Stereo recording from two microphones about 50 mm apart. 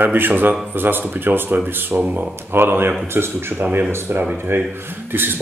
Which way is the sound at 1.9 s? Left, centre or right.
Right.